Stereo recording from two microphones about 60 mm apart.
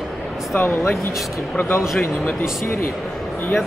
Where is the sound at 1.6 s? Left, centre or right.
Left.